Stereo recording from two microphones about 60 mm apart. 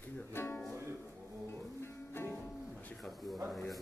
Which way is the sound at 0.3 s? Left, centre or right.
Left.